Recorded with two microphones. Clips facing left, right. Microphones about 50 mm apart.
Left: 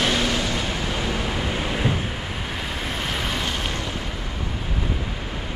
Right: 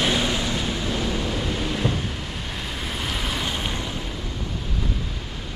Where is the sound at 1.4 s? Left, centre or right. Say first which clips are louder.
Left 1 dB; left.